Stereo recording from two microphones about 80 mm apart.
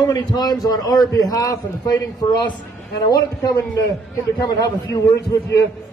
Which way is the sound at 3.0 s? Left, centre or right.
Left.